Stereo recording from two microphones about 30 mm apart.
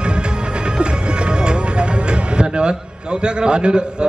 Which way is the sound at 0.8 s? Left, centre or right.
Right.